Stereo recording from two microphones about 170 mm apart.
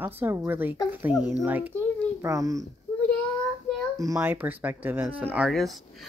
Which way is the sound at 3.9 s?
20° right (ahead or behind).